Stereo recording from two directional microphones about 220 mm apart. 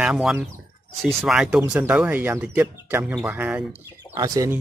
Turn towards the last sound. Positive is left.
turn(degrees=-15)  # may be behind; listen again after turning